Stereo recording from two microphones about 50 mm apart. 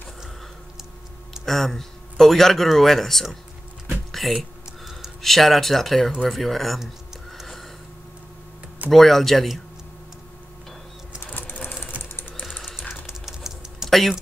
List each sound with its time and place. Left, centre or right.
1.4 s speech: centre
3.9 s a sound: centre
6.2 s speech: centre
7.3 s a sound: centre
8.9 s speech: centre
11.3 s sewing machine: left
12.0 s typing: left
12.4 s typing: centre
13.8 s typing: centre